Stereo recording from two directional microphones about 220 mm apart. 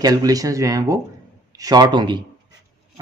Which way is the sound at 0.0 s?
15° right (ahead or behind).